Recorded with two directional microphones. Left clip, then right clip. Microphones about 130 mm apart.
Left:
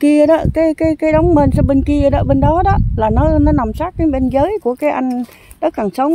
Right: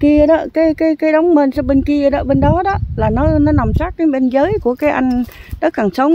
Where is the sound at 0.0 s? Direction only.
15° right (ahead or behind).